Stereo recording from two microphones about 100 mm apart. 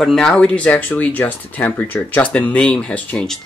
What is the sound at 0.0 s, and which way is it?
Speech, 5° left (ahead or behind).